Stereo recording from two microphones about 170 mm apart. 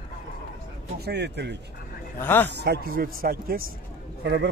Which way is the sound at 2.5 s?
70° right (ahead or behind).